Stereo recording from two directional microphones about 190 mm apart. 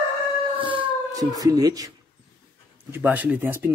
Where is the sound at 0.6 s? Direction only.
25° right (ahead or behind).